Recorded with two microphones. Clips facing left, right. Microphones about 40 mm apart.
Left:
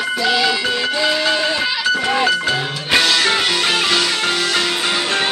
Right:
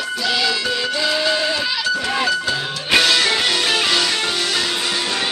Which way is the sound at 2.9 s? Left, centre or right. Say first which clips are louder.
Even; centre.